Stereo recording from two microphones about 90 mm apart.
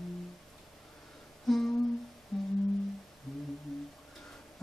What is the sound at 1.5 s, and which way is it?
Humming, centre (ahead or behind).